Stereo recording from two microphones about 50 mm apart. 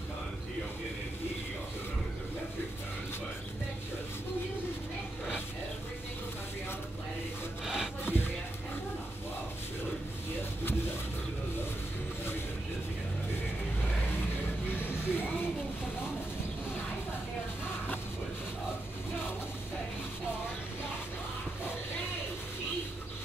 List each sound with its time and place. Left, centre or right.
7.6 s sawing: centre
8.0 s a sound: left
14.7 s music: left